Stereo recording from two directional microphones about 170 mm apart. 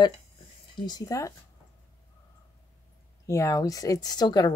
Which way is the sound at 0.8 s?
20° left (ahead or behind).